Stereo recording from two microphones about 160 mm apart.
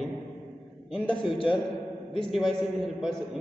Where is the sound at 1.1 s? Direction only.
35° left (ahead or behind).